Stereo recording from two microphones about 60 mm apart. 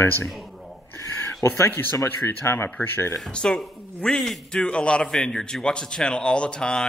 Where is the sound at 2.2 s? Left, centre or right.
Left.